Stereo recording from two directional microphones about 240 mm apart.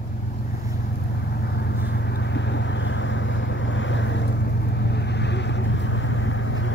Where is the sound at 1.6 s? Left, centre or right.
Left.